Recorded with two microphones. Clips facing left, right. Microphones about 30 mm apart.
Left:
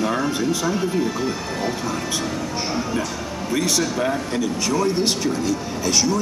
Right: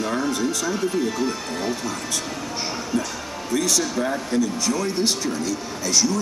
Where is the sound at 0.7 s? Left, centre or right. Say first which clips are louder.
Left 1 dB; centre.